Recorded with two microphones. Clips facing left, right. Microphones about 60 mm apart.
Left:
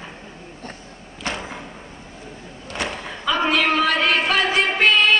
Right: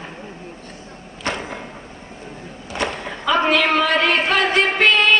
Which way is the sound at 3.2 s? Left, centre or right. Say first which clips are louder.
Right 3 dB; right.